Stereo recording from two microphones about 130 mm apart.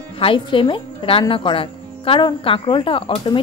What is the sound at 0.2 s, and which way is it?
A woman's voice, 40° left (ahead or behind).